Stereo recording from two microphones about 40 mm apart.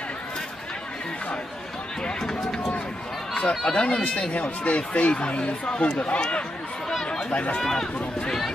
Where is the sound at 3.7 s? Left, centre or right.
Left.